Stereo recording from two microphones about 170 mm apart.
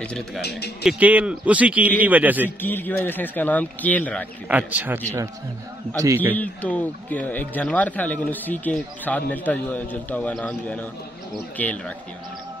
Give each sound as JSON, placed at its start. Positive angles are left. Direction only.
{"t": 0.4, "sound": "speech", "side_deg": 75}
{"t": 0.8, "sound": "a man's voice", "side_deg": -10}
{"t": 2.6, "sound": "speech", "side_deg": 10}
{"t": 4.5, "sound": "a man's voice", "side_deg": -10}
{"t": 6.3, "sound": "speech", "side_deg": 10}